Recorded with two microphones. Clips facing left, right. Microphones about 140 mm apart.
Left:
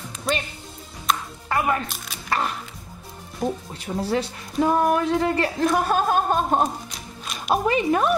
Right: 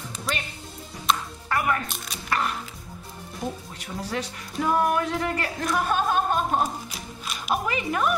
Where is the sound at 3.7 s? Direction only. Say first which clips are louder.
Left 6 dB; 30° left (ahead or behind).